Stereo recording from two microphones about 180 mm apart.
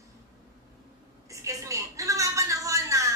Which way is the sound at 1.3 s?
15° right (ahead or behind).